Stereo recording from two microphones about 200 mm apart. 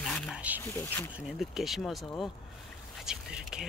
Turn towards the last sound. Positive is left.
turn(degrees=-5)  # may be behind; listen again after turning